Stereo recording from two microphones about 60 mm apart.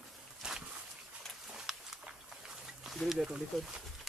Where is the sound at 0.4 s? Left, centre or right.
Centre.